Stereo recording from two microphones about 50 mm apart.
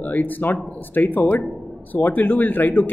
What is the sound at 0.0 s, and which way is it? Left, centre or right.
Speech, left.